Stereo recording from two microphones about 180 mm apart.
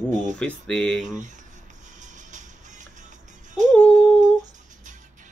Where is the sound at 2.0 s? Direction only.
45° right (ahead or behind).